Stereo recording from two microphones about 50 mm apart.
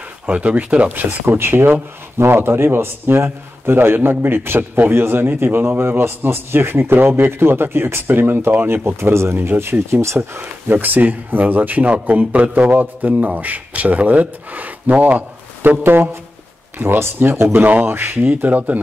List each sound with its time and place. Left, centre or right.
0.3 s speech: right
1.2 s speech: right
10.7 s a man's voice: right
15.8 s speech: right
18.2 s a man's voice: right